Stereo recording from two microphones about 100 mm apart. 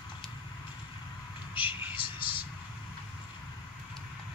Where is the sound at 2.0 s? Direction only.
55° left (ahead or behind).